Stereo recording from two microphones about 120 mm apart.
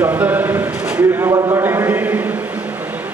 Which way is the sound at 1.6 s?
20° right (ahead or behind).